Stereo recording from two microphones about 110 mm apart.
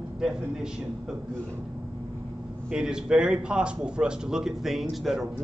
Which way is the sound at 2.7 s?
5° right (ahead or behind).